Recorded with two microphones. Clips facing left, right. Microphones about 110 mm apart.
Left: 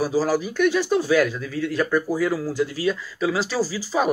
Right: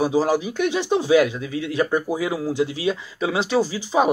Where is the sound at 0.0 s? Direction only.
20° right (ahead or behind).